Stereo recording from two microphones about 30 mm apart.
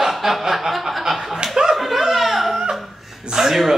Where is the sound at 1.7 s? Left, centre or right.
Centre.